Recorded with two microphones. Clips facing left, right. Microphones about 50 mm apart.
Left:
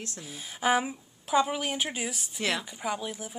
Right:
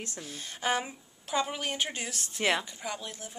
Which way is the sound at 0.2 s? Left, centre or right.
Centre.